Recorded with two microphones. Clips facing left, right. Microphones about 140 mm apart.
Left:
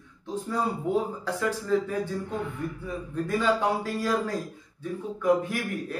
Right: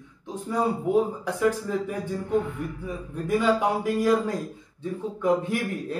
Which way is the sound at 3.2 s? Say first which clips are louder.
Right 3 dB; 15° right (ahead or behind).